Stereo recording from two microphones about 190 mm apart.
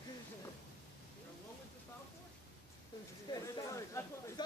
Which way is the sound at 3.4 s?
15° left (ahead or behind).